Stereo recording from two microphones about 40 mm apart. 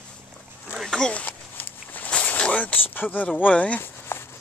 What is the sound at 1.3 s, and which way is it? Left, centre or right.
Walk, left.